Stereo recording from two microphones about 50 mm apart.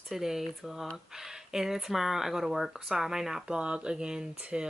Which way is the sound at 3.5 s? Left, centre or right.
Centre.